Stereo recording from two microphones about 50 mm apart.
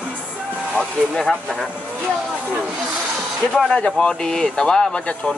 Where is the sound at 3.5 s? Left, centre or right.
Centre.